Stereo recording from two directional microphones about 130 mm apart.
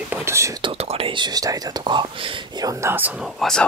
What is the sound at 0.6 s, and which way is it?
Speech, 50° right (ahead or behind).